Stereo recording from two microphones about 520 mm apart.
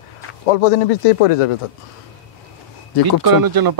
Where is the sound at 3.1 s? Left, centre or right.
Right.